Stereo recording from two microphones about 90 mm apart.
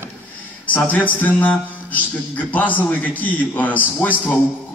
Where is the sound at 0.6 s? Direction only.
20° left (ahead or behind).